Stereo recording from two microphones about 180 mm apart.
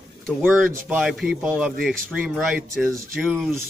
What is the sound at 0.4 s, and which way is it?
Speech, 10° right (ahead or behind).